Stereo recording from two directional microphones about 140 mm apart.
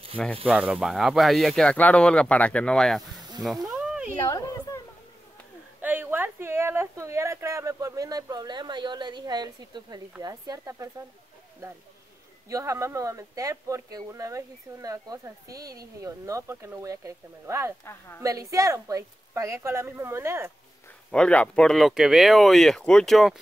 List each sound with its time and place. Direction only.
0.2 s speech: 10° left (ahead or behind)
0.5 s speech: 10° right (ahead or behind)
3.8 s a sound: 5° right (ahead or behind)
4.2 s a woman's voice: 25° left (ahead or behind)
5.8 s speech: 15° right (ahead or behind)
12.4 s speech: 25° right (ahead or behind)
21.1 s speech: 10° left (ahead or behind)